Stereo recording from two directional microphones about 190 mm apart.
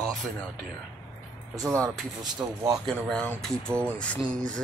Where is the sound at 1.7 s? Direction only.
15° right (ahead or behind).